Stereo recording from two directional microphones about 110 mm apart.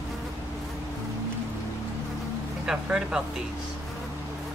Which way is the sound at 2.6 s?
5° right (ahead or behind).